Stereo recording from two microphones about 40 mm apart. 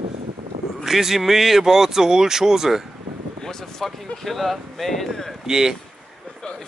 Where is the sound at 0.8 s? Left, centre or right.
Centre.